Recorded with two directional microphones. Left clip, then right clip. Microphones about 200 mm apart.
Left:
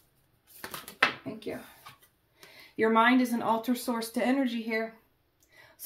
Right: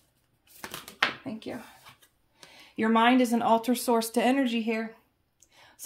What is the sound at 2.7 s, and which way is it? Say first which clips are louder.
Speech: even; 40° right (ahead or behind).